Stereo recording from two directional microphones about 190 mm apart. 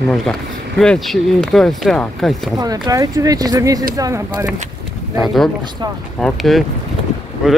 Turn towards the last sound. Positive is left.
turn(degrees=-5)  # may be behind; listen again after turning